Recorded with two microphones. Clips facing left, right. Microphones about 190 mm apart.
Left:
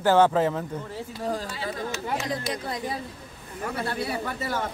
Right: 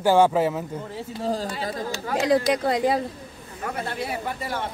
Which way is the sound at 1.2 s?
30° right (ahead or behind).